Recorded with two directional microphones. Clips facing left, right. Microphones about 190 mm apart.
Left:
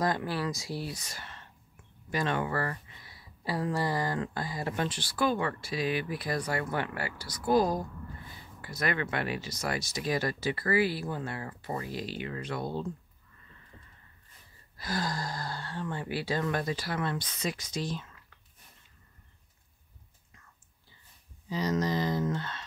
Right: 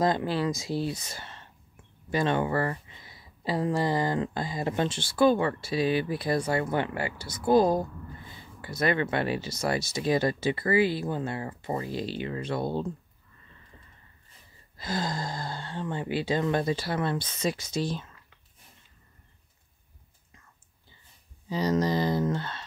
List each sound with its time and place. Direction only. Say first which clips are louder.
0.0 s speech: right 5 dB; 25° right (ahead or behind)
14.8 s speech: right 2 dB; 25° right (ahead or behind)
21.5 s speech: right 4 dB; 30° right (ahead or behind)